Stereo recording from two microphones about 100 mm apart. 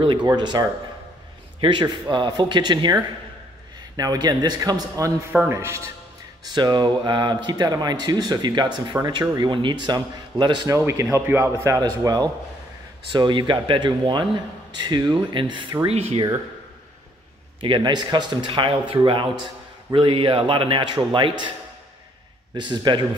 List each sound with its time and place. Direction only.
0.0 s a man's voice: 55° right (ahead or behind)
0.3 s speech: 45° right (ahead or behind)
5.5 s speech: 25° right (ahead or behind)
6.4 s speech: 45° right (ahead or behind)
9.2 s speech: 35° right (ahead or behind)
9.5 s speech: 55° right (ahead or behind)
10.8 s speech: 25° right (ahead or behind)
11.8 s speech: 40° right (ahead or behind)
13.1 s speech: 50° right (ahead or behind)
17.6 s a man's voice: 55° right (ahead or behind)
22.5 s speech: 50° right (ahead or behind)